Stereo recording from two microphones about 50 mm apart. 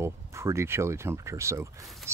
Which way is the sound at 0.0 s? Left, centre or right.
Right.